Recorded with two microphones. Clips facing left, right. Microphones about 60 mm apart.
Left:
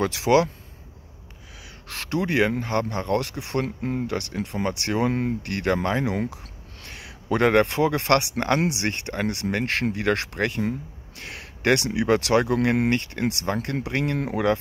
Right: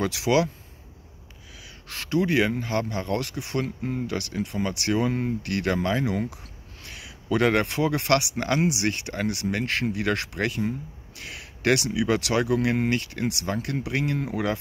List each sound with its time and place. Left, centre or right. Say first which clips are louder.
0.0 s speech: left 3 dB; left
1.9 s speech: right 2 dB; left
5.4 s speech: left 1 dB; left